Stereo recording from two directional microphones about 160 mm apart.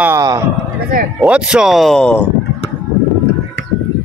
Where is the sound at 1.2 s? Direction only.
5° right (ahead or behind).